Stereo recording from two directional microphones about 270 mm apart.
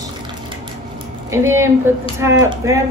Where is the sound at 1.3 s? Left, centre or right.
Centre.